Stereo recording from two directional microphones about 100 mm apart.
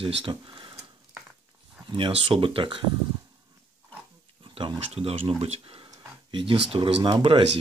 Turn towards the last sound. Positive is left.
turn(degrees=-65)  # may be behind; listen again after turning